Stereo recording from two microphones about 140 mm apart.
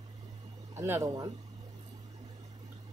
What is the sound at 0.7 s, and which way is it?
Speech, 20° right (ahead or behind).